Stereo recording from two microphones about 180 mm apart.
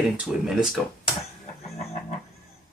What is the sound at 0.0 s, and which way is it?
Speech, centre (ahead or behind).